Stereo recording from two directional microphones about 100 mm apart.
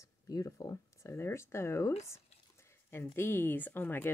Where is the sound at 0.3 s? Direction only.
35° left (ahead or behind).